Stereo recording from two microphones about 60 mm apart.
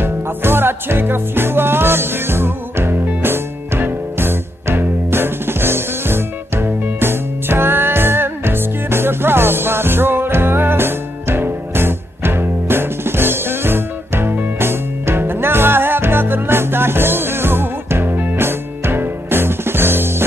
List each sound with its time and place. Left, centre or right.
0.0 s music: right